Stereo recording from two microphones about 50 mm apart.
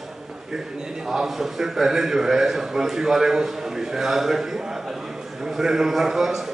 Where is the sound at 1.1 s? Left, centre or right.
Centre.